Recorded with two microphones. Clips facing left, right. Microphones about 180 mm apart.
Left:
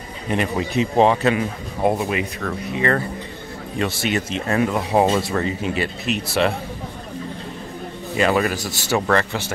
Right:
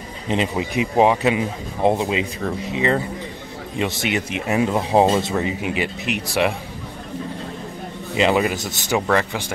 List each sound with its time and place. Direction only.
0.3 s speech: 15° right (ahead or behind)
8.2 s speech: 20° right (ahead or behind)
9.0 s speech: 10° right (ahead or behind)